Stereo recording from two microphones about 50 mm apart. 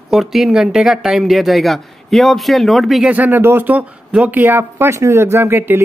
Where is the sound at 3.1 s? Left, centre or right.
Right.